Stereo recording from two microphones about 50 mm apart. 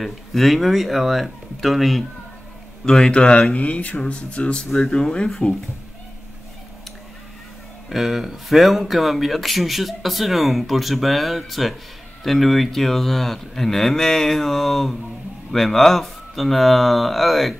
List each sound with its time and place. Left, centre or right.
0.0 s speech: centre
2.8 s a man's voice: centre
7.9 s speech: centre